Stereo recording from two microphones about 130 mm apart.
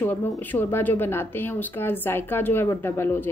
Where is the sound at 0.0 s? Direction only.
15° left (ahead or behind).